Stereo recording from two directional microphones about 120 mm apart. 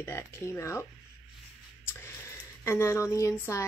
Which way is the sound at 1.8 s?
20° left (ahead or behind).